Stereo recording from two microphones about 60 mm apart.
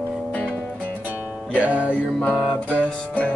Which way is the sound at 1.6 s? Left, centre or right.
Right.